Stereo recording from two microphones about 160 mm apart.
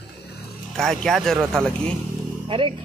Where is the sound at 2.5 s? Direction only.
35° right (ahead or behind).